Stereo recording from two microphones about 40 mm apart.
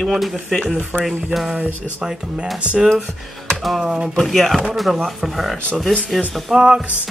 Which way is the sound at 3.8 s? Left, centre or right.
Centre.